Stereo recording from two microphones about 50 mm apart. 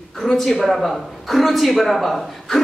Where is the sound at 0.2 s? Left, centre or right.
Centre.